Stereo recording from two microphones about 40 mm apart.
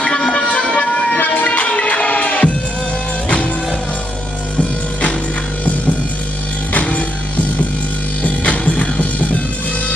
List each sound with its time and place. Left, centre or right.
0.0 s music: centre
0.7 s a sound: left
1.1 s music: left
6.7 s music: left
8.2 s music: left